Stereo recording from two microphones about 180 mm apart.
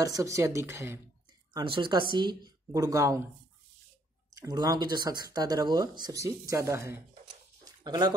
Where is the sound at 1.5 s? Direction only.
30° right (ahead or behind).